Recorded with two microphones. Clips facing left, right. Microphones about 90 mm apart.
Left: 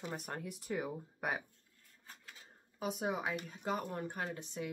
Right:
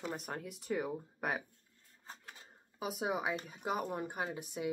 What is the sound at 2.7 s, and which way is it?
Speech, 5° right (ahead or behind).